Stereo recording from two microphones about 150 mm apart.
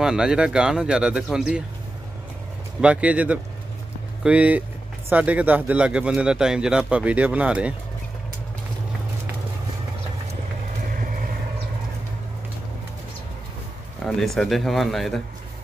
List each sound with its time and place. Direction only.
0.0 s speech: 5° right (ahead or behind)
2.8 s speech: 10° right (ahead or behind)
11.0 s vehicle: 65° right (ahead or behind)
14.0 s speech: centre (ahead or behind)